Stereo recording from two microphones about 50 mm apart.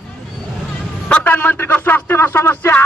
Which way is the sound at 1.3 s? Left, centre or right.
Left.